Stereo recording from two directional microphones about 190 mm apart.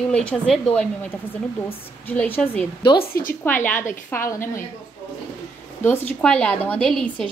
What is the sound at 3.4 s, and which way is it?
A woman's voice, 10° left (ahead or behind).